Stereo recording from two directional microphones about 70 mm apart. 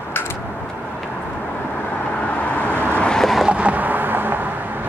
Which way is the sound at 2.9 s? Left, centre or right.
Centre.